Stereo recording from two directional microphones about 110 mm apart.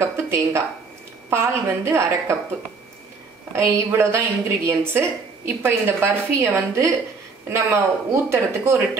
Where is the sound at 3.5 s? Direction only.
25° right (ahead or behind).